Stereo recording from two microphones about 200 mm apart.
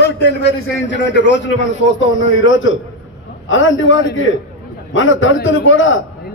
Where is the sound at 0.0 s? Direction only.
60° left (ahead or behind).